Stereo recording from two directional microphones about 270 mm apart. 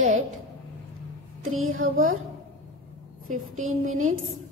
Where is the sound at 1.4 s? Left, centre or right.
Right.